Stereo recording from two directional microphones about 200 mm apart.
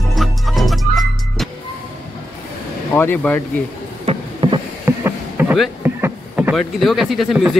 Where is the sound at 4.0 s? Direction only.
30° right (ahead or behind).